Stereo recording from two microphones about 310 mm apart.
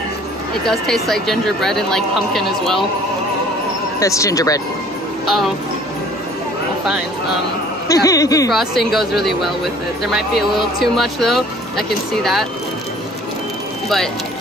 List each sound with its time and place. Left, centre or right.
0.7 s speech: centre
4.0 s speech: centre
5.2 s speech: centre
7.9 s speech: centre
8.5 s speech: centre
9.1 s speech: left
10.8 s speech: centre